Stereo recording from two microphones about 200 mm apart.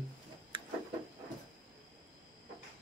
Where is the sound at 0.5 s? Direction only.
25° right (ahead or behind).